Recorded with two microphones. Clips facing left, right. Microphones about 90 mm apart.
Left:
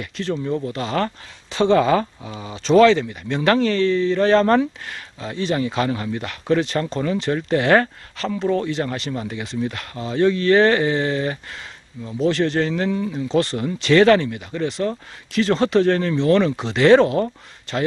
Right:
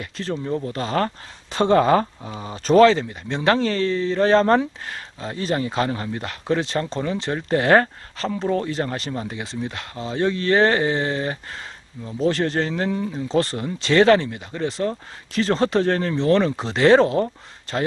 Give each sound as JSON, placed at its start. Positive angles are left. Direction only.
{"t": 0.0, "sound": "speech", "side_deg": -30}